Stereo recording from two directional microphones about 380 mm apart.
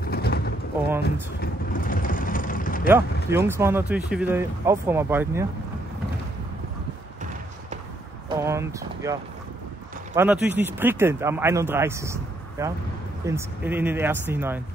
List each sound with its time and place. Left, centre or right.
0.1 s pigeon: left
1.4 s vehicle: left
2.9 s speech: centre
8.3 s speech: centre